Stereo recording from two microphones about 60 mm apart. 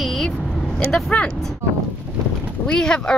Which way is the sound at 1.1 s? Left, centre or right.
Left.